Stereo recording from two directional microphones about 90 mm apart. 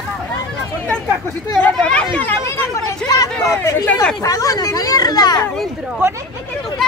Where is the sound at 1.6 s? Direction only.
15° left (ahead or behind).